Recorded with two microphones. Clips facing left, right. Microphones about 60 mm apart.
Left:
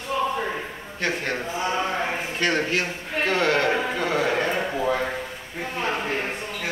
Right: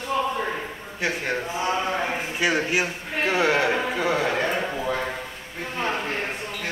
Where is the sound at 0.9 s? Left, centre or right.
Centre.